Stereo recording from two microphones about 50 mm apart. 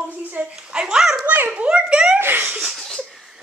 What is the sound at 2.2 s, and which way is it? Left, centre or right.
Speech, right.